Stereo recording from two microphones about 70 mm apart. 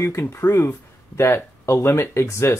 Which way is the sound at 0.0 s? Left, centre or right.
Left.